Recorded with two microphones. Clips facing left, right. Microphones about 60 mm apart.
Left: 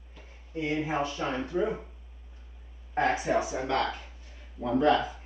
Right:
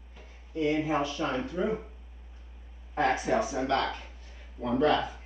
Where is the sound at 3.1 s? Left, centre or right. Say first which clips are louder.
Right 1 dB; centre.